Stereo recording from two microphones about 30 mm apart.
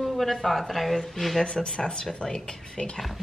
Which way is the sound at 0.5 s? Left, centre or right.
Centre.